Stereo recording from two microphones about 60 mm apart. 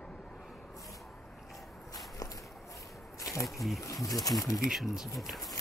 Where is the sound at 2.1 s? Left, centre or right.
Left.